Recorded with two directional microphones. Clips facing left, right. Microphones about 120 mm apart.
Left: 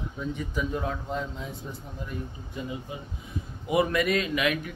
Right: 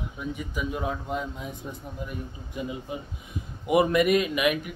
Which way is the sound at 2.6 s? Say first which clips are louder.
Right 2 dB; 15° right (ahead or behind).